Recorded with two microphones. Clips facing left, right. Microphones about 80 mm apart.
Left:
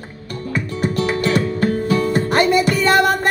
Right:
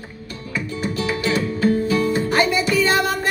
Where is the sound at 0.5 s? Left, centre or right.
Left.